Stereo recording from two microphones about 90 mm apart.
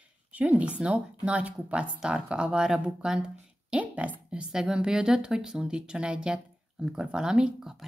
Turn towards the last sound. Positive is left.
turn(degrees=-5)  # may be behind; listen again after turning